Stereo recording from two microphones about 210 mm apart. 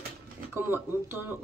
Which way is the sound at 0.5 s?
10° right (ahead or behind).